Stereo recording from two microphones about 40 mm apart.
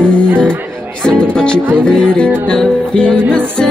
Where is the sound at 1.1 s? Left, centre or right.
Centre.